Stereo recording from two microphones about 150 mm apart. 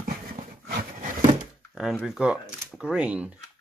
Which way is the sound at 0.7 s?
65° right (ahead or behind).